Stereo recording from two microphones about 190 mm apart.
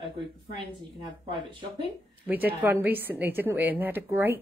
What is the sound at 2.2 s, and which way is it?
A woman's voice, 10° right (ahead or behind).